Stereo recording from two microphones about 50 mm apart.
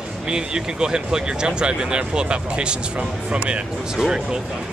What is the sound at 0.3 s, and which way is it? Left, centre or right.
Speech, centre.